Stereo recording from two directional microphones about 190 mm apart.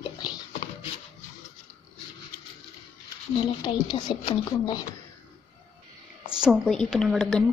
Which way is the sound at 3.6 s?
20° left (ahead or behind).